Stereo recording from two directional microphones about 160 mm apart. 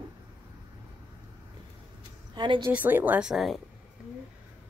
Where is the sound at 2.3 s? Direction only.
30° right (ahead or behind).